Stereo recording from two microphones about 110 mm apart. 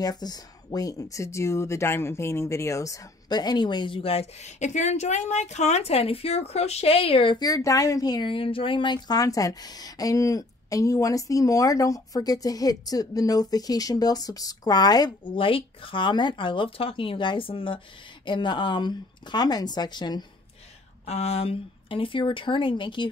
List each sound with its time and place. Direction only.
0.0 s speech: 35° left (ahead or behind); by 7.3 s 55° left (ahead or behind)
7.3 s speech: 35° left (ahead or behind)
15.3 s speech: 55° left (ahead or behind)
21.0 s speech: 75° left (ahead or behind); by 23.0 s 45° left (ahead or behind)